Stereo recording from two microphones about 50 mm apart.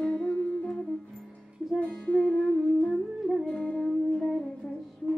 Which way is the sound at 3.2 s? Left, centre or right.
Centre.